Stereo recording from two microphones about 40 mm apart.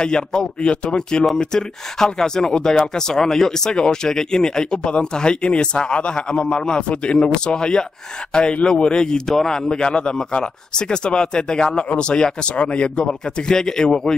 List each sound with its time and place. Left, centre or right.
0.0 s speech: centre